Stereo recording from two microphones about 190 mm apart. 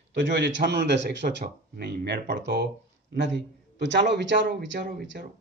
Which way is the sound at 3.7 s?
65° right (ahead or behind).